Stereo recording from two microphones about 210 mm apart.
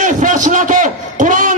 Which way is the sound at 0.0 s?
40° right (ahead or behind).